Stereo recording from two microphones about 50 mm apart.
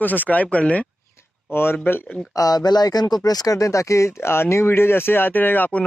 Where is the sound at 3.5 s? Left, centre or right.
Left.